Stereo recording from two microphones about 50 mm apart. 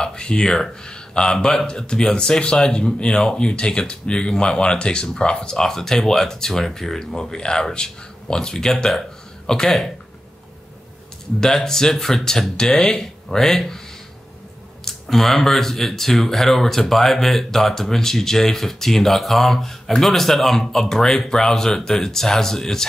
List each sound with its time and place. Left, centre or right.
0.0 s speech: centre
11.3 s speech: centre
14.9 s speech: centre